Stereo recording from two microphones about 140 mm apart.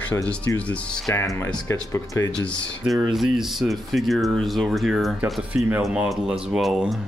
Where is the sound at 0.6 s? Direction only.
10° left (ahead or behind).